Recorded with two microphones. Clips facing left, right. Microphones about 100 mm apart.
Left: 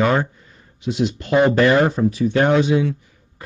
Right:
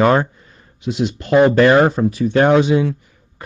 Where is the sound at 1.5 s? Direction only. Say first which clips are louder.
Right 3 dB; 55° right (ahead or behind).